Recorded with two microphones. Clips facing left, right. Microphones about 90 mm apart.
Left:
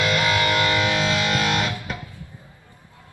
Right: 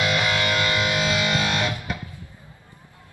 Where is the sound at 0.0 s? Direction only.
20° right (ahead or behind).